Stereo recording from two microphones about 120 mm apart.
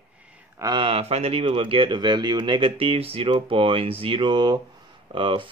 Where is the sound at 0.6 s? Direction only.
45° right (ahead or behind).